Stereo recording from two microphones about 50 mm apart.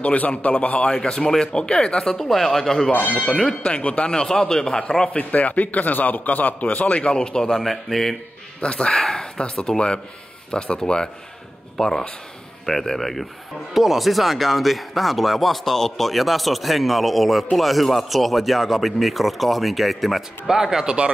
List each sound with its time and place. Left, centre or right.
0.0 s a man's voice: left; by 2.9 s centre
2.9 s speech: left
3.6 s a man's voice: left
4.1 s speech: centre
5.1 s a man's voice: left; by 8.2 s centre
8.5 s speech: centre